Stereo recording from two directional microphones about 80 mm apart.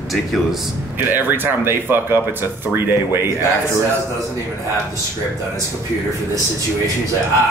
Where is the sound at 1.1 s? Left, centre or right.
Right.